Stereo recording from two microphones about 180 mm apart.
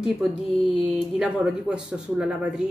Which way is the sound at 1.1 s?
5° right (ahead or behind).